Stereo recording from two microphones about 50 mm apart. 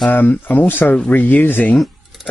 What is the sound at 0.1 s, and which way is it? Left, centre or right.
Speech, left.